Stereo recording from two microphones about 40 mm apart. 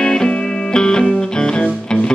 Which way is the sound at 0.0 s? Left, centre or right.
Left.